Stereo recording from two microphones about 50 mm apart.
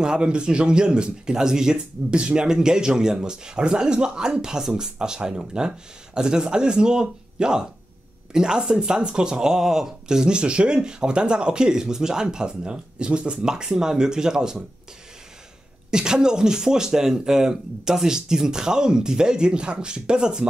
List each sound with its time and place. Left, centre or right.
0.0 s speech: centre
15.9 s speech: centre